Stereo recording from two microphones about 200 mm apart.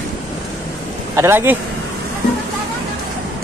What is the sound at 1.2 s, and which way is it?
Speech, 10° right (ahead or behind).